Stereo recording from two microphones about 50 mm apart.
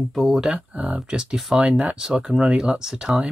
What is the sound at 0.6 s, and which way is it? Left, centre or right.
Speech, right.